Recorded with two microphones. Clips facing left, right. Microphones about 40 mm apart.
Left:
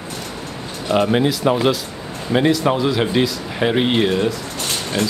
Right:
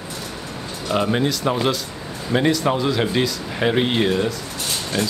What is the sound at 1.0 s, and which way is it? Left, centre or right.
Speech, centre.